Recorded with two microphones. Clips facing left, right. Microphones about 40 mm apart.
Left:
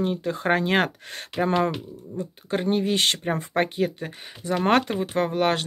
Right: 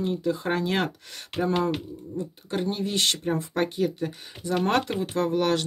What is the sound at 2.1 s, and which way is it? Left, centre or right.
Speech, left.